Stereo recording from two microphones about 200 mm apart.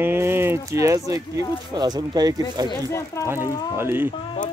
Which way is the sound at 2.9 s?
15° left (ahead or behind).